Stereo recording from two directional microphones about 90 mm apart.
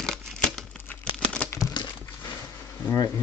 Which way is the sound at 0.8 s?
15° left (ahead or behind).